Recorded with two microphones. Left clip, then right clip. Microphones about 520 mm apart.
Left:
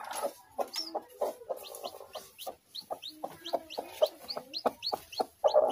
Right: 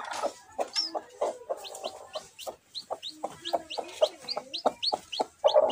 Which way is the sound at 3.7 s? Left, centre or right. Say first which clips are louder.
Right 1 dB; left.